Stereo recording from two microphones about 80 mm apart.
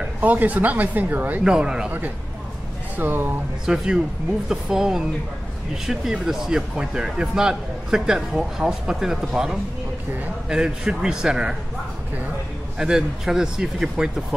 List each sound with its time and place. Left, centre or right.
0.2 s speech: right
1.4 s speech: centre
1.9 s speech: right
3.6 s speech: centre
12.7 s speech: centre